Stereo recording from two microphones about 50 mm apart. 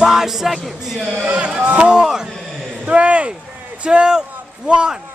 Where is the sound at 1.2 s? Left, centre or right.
Right.